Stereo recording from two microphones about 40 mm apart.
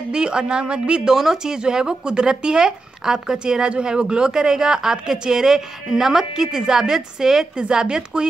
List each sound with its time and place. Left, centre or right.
0.1 s a woman's voice: right
1.1 s speech: centre
7.5 s a woman's voice: right